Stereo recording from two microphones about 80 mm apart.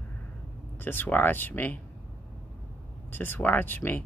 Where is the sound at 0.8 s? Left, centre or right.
Left.